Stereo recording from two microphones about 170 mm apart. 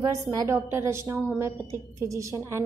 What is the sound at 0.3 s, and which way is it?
A woman's voice, 15° right (ahead or behind).